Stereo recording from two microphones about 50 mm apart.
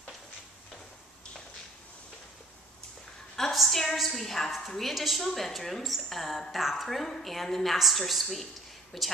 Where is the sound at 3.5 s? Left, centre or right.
Centre.